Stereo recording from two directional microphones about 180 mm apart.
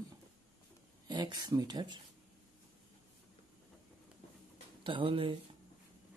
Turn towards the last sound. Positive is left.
turn(degrees=-30)  # may be behind; listen again after turning